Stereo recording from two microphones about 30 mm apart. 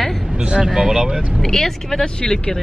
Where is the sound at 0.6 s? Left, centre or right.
Centre.